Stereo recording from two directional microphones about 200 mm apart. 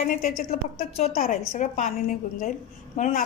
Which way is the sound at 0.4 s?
45° left (ahead or behind).